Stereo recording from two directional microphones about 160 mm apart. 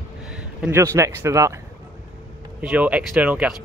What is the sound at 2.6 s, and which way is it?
Speech, 10° right (ahead or behind).